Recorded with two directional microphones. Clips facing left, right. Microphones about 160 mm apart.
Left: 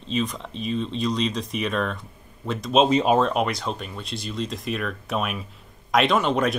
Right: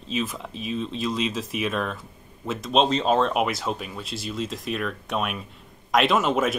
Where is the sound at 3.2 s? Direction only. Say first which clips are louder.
Even; 5° right (ahead or behind).